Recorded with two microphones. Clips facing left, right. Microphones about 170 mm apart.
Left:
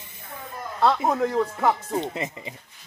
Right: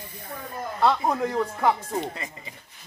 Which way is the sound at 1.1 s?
5° left (ahead or behind).